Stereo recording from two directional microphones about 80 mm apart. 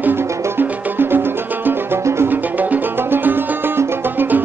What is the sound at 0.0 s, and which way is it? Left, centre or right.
Music, right.